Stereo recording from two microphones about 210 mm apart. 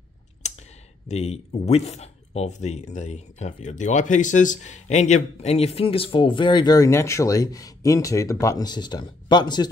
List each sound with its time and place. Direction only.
0.4 s clicking: 35° left (ahead or behind)
1.0 s speech: 30° left (ahead or behind)